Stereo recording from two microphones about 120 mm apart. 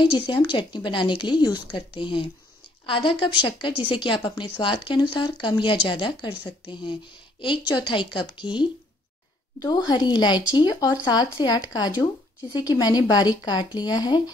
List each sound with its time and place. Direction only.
0.0 s a woman's voice: 40° left (ahead or behind)
9.8 s speech: 35° left (ahead or behind)